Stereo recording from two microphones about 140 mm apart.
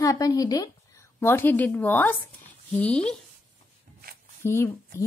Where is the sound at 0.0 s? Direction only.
25° left (ahead or behind).